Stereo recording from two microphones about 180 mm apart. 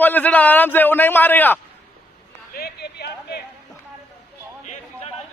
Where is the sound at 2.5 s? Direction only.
60° left (ahead or behind).